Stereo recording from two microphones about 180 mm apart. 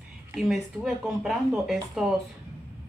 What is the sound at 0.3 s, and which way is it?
Speech, centre (ahead or behind).